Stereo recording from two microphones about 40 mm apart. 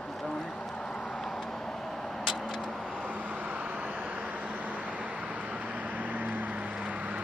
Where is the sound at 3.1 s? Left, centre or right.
Right.